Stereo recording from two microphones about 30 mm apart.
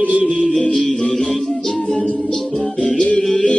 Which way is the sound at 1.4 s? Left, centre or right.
Centre.